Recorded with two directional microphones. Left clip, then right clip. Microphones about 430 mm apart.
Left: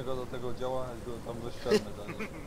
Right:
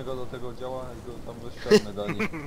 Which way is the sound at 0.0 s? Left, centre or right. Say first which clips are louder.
Right 2 dB; centre.